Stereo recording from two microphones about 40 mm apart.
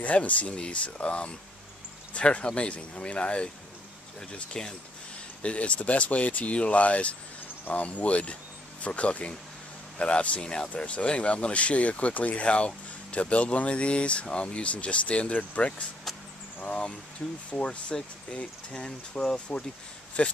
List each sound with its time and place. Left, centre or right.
0.0 s speech: left
5.4 s speech: left
10.7 s speech: left
17.5 s speech: left
20.2 s speech: left